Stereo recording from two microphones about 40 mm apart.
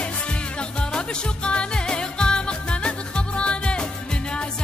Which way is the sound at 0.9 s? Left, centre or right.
Left.